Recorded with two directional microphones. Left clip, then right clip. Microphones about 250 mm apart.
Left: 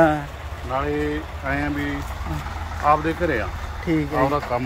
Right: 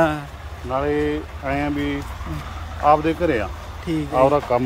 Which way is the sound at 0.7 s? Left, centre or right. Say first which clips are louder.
Right 3 dB; right.